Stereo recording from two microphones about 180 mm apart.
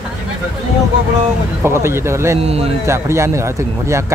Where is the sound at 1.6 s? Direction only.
15° right (ahead or behind).